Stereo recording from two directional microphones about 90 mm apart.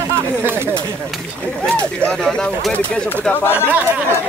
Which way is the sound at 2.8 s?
20° left (ahead or behind).